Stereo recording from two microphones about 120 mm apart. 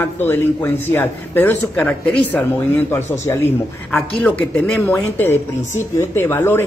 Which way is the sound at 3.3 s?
20° left (ahead or behind).